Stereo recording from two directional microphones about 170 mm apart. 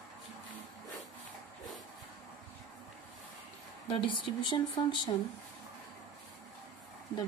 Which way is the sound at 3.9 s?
30° left (ahead or behind).